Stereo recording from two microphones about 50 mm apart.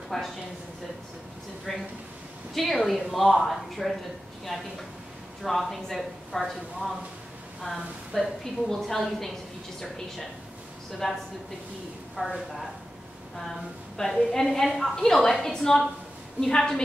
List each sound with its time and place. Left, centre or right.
0.1 s a woman's voice: centre
1.7 s a woman's voice: centre
12.2 s speech: right
13.4 s a woman's voice: centre